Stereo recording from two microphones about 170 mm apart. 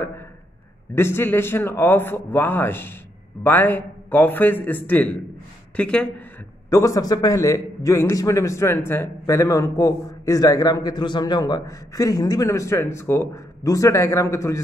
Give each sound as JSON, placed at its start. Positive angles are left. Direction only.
{"t": 0.9, "sound": "a man's voice", "side_deg": 15}
{"t": 6.7, "sound": "a man's voice", "side_deg": 20}